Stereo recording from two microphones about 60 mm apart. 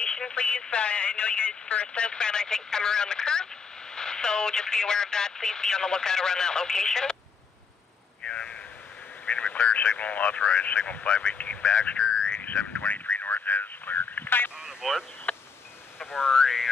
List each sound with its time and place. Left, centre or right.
0.0 s speech: centre
8.2 s vehicle: centre
9.2 s speech: left
14.6 s a sound: centre
15.3 s a sound: left
16.3 s speech: centre